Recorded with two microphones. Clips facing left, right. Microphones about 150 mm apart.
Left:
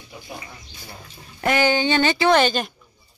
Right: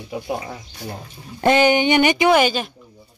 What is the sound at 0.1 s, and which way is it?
Speech, 70° right (ahead or behind).